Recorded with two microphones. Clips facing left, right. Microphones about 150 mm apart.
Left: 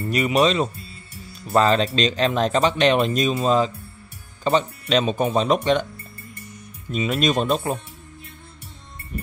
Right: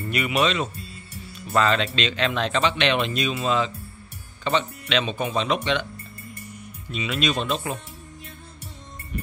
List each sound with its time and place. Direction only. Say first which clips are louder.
0.1 s speech: left 4 dB; 35° left (ahead or behind)
6.9 s speech: left 4 dB; 45° left (ahead or behind)